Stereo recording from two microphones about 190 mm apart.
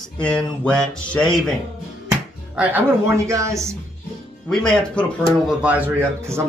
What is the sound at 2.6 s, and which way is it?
A man's voice, 15° right (ahead or behind).